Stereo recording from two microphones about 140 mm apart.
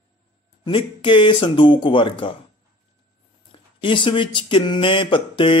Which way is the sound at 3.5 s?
35° left (ahead or behind).